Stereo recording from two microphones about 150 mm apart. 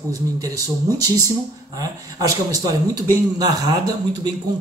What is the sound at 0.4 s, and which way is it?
Speech, 25° right (ahead or behind).